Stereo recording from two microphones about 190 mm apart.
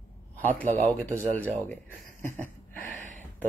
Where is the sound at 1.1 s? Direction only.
40° right (ahead or behind).